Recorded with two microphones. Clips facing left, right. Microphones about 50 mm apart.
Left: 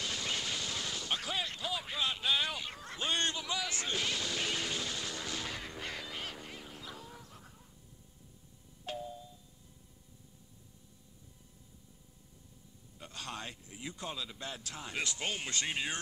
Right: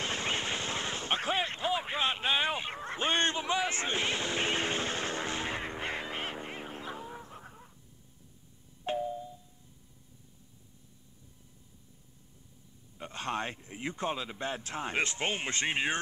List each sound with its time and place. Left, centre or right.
0.0 s a sound: right
8.8 s music: right
12.9 s a man's voice: right